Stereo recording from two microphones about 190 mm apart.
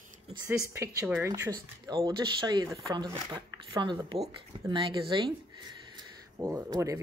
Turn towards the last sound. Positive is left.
turn(degrees=-20)  # may be behind; listen again after turning